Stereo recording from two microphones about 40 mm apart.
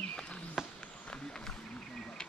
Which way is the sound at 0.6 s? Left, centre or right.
Centre.